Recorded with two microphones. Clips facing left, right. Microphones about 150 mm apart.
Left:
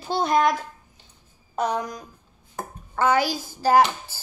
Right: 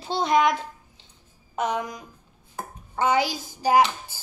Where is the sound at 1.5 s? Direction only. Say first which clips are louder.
Left 1 dB; 40° left (ahead or behind).